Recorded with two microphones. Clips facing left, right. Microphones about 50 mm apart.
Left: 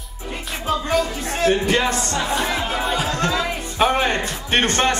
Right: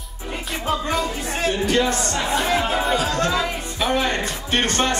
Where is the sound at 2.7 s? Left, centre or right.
Centre.